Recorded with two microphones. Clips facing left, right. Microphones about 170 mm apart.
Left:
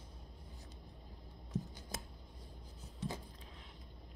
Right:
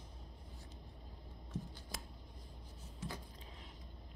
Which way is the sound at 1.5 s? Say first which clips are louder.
Left 4 dB; 20° left (ahead or behind).